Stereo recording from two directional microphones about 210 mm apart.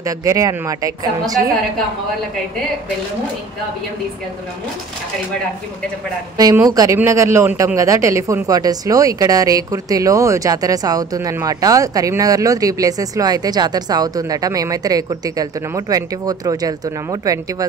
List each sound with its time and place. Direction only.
0.0 s a man's voice: 15° right (ahead or behind)
6.3 s a man's voice: 15° right (ahead or behind)